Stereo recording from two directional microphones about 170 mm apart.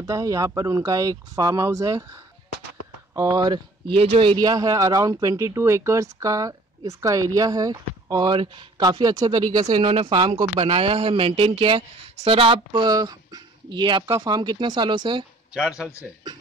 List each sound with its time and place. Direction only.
0.0 s speech: 20° right (ahead or behind)
15.5 s speech: 5° right (ahead or behind)